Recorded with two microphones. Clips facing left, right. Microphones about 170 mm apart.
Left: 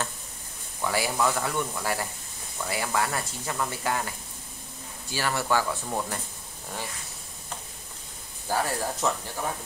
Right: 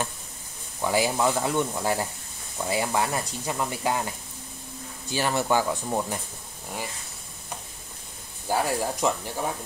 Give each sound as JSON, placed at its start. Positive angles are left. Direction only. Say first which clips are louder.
{"t": 0.7, "sound": "speech", "louder": "right 3 dB", "side_deg": -20}
{"t": 5.1, "sound": "speech", "louder": "right 3 dB", "side_deg": -20}
{"t": 8.5, "sound": "speech", "louder": "right 2 dB", "side_deg": -15}